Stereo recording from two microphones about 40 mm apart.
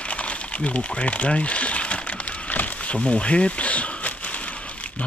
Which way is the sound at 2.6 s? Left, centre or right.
Left.